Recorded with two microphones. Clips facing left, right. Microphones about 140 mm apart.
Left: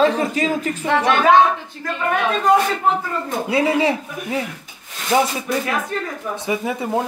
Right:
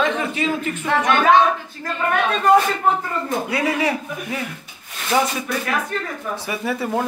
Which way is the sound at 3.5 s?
25° left (ahead or behind).